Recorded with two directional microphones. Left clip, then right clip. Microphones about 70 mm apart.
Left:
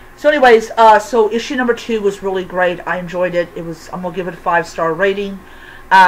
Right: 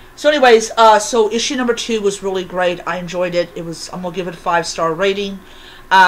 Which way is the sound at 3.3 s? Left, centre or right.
Right.